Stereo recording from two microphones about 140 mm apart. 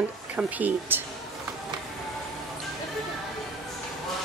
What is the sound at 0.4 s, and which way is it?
Speech, 10° right (ahead or behind).